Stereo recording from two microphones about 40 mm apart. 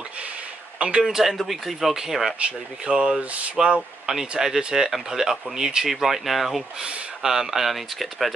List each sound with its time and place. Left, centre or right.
0.7 s speech: right
1.0 s speech: centre
2.3 s speech: right
3.6 s speech: centre
4.0 s a sound: centre
4.4 s speech: centre